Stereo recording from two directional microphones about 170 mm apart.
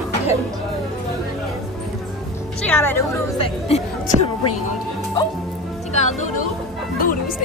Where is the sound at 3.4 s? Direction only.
40° left (ahead or behind).